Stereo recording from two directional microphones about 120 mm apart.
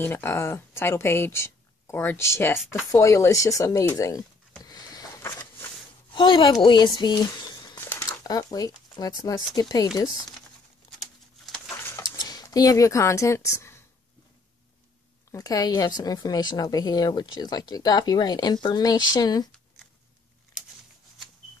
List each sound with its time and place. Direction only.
0.0 s speech: 20° left (ahead or behind)
4.6 s a sound: 30° left (ahead or behind)
6.1 s speech: 40° left (ahead or behind)
7.7 s crumpling: 20° left (ahead or behind)
9.6 s a woman's voice: 30° left (ahead or behind)
11.0 s bird: centre (ahead or behind)
12.0 s a sound: 35° left (ahead or behind)
15.3 s a woman's voice: 30° left (ahead or behind)